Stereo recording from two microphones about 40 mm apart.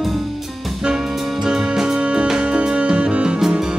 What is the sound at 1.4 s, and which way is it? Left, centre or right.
Music, right.